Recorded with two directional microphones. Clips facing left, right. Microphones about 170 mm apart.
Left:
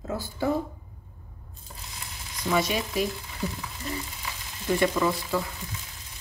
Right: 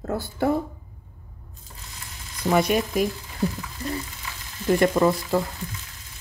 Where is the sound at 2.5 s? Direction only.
50° right (ahead or behind).